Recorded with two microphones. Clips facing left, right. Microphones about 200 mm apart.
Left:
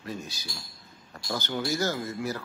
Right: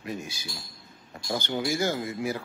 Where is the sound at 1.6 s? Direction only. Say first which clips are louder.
Right 1 dB; 15° right (ahead or behind).